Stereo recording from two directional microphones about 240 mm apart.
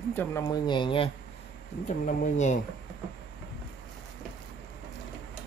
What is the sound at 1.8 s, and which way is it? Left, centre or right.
Speech, left.